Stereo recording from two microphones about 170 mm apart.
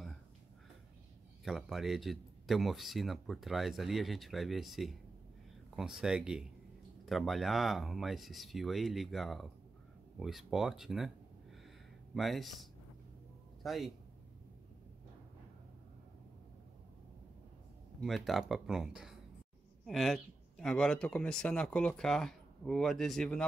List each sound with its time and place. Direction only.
1.4 s speech: centre (ahead or behind)
12.1 s a man's voice: centre (ahead or behind)
18.0 s speech: centre (ahead or behind)